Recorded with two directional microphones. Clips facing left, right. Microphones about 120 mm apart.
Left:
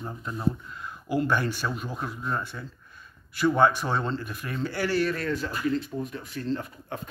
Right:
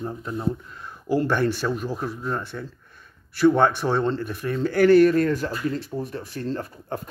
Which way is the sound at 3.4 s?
20° right (ahead or behind).